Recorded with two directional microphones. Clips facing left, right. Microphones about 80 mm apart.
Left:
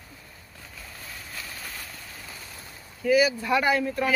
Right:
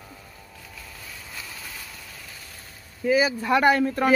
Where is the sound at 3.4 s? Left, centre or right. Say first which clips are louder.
Right 4 dB; right.